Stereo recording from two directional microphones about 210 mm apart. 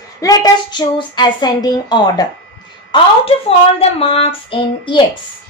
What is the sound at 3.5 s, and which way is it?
A woman's voice, 30° left (ahead or behind).